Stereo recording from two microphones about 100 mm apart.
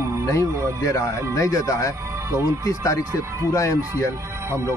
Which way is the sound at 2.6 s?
30° left (ahead or behind).